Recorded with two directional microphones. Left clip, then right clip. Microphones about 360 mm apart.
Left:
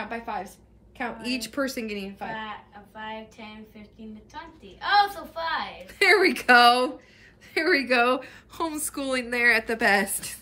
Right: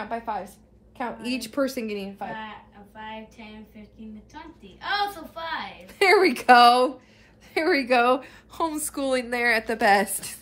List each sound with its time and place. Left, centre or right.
0.1 s a woman's voice: centre
3.0 s a woman's voice: centre
5.9 s a woman's voice: centre